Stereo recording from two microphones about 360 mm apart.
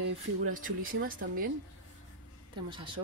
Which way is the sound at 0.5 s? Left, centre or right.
Right.